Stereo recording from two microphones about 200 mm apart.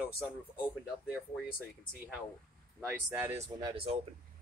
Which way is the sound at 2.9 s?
10° right (ahead or behind).